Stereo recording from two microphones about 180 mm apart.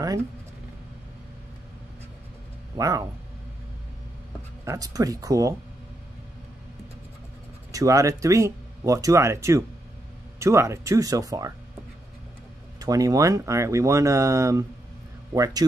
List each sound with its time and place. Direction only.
2.8 s speech: 20° right (ahead or behind)
4.6 s speech: 20° right (ahead or behind)
7.7 s speech: 20° right (ahead or behind)
12.8 s speech: 20° right (ahead or behind)